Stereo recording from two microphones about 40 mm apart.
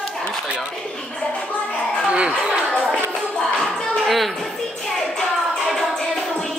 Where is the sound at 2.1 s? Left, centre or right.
Right.